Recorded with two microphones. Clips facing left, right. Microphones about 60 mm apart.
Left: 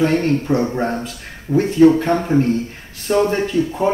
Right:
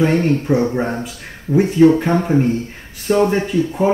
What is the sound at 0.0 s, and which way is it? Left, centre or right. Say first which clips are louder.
Speech: right 1 dB; centre.